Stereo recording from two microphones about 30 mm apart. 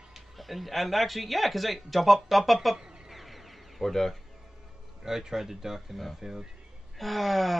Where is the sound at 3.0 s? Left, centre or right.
Centre.